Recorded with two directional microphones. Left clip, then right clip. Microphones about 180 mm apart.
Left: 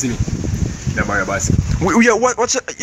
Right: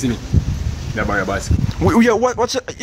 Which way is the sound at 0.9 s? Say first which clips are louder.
Left 1 dB; centre (ahead or behind).